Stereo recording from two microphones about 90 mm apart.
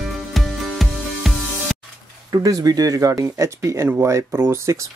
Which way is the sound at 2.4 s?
45° right (ahead or behind).